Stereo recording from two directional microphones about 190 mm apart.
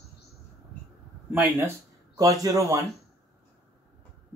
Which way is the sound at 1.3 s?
10° right (ahead or behind).